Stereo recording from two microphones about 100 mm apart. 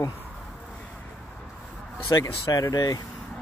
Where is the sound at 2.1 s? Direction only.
40° left (ahead or behind).